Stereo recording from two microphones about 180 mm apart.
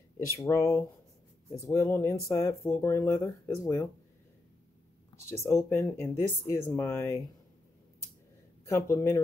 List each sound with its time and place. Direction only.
0.4 s speech: 15° left (ahead or behind)
5.1 s speech: 15° left (ahead or behind)
8.6 s speech: 15° left (ahead or behind)